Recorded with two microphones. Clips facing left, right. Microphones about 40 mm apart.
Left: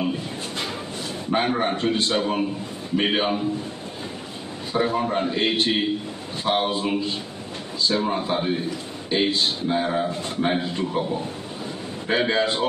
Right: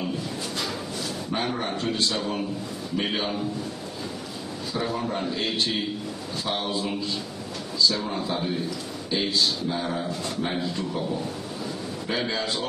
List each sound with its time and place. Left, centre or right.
0.0 s a sound: left
1.3 s a man's voice: left
4.7 s a man's voice: left